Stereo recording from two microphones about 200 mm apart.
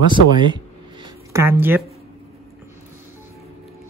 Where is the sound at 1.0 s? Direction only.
15° right (ahead or behind).